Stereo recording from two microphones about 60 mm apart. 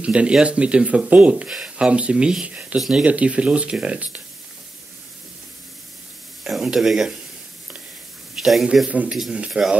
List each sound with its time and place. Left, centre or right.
0.0 s speech: centre
6.4 s speech: centre
8.4 s a man's voice: centre
8.8 s speech: right
9.5 s speech: centre